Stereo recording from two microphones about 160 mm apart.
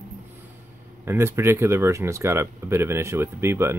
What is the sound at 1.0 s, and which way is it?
Speech, 15° right (ahead or behind).